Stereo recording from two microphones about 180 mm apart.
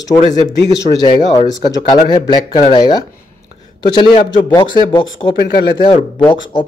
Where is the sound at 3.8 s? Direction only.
25° left (ahead or behind).